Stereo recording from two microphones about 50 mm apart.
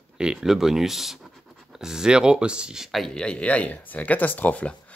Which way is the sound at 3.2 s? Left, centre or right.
Left.